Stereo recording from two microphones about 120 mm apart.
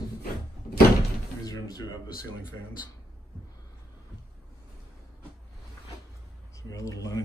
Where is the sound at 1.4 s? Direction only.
30° left (ahead or behind).